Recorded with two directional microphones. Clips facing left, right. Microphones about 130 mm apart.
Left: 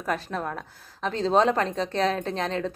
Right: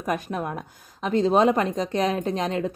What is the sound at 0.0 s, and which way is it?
Speech, 15° right (ahead or behind).